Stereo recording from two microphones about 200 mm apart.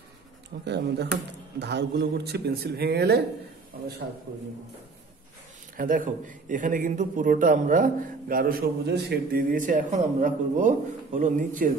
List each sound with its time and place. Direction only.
0.7 s a man's voice: 55° right (ahead or behind)
5.8 s a man's voice: 45° right (ahead or behind)